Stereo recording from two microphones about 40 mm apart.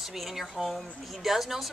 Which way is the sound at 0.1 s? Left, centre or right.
Centre.